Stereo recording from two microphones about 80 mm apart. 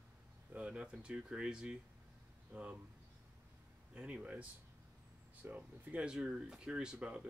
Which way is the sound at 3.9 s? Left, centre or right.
Centre.